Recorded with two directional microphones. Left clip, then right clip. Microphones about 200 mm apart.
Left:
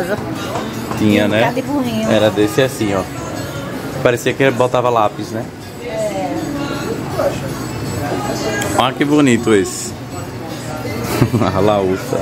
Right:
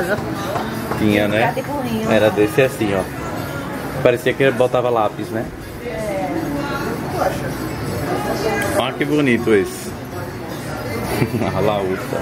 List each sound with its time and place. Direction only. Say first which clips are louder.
1.0 s speech: left 3 dB; 20° left (ahead or behind)
4.0 s speech: left 1 dB; 20° left (ahead or behind)
8.7 s speech: left 4 dB; 35° left (ahead or behind)
11.4 s speech: left 5 dB; 45° left (ahead or behind)